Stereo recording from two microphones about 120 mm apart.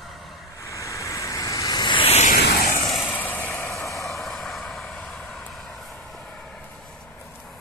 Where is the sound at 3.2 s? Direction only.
15° left (ahead or behind).